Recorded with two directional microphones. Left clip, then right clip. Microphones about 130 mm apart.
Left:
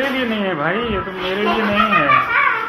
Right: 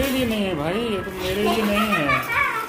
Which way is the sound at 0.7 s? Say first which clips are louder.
Left 5 dB; 30° right (ahead or behind).